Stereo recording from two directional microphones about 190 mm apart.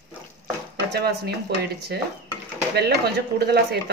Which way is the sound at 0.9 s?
55° right (ahead or behind).